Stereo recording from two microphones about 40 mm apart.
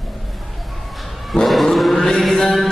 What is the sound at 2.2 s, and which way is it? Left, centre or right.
Mantra, centre.